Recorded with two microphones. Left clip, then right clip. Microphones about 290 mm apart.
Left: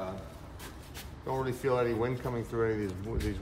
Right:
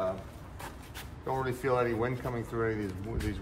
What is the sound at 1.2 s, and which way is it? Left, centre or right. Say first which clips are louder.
Speech: even; centre.